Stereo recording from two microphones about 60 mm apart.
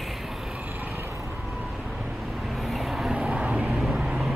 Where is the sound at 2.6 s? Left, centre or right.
Centre.